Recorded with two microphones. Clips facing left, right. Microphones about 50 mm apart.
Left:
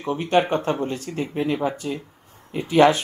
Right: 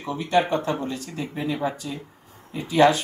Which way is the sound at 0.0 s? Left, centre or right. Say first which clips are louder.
Left 2 dB; left.